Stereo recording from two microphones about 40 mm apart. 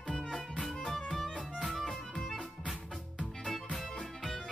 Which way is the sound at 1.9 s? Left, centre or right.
Centre.